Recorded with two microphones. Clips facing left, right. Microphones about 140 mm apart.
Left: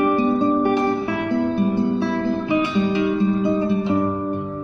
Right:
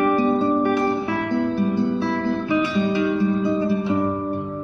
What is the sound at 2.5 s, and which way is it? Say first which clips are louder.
Music: left 1 dB; 20° left (ahead or behind).